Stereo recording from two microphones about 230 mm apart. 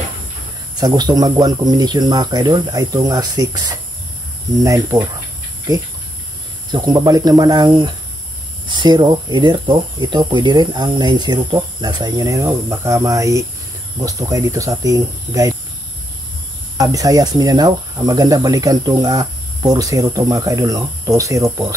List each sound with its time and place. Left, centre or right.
0.7 s speech: centre
6.7 s speech: centre
16.7 s speech: centre